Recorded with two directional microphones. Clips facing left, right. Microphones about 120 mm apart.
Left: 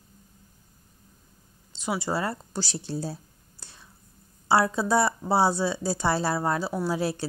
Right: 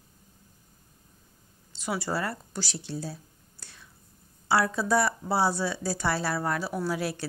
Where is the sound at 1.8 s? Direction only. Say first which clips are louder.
Left 2 dB; 20° left (ahead or behind).